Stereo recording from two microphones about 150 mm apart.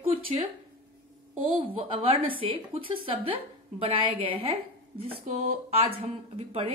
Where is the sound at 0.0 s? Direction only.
40° right (ahead or behind).